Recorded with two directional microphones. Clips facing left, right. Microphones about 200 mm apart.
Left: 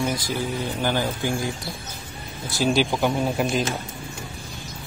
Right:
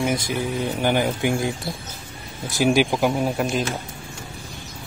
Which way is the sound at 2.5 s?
15° right (ahead or behind).